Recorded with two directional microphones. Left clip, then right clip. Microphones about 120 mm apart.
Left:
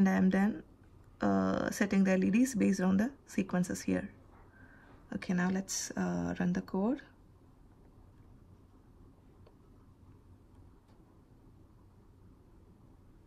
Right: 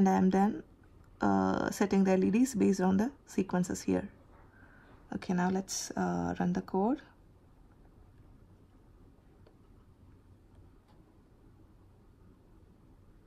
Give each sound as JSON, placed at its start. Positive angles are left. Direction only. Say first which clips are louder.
{"t": 0.0, "sound": "speech", "louder": "right 3 dB", "side_deg": -20}
{"t": 5.1, "sound": "speech", "louder": "right 3 dB", "side_deg": -20}